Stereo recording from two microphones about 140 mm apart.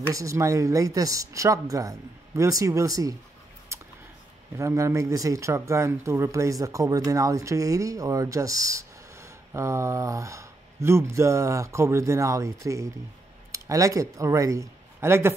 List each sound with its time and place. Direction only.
0.1 s speech: 20° right (ahead or behind)
4.6 s speech: 20° right (ahead or behind)